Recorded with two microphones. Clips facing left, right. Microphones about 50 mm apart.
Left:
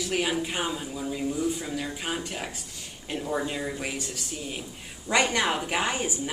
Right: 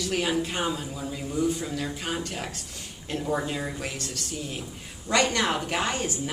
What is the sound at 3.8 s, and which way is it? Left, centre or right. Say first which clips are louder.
A woman's voice: left 1 dB; centre.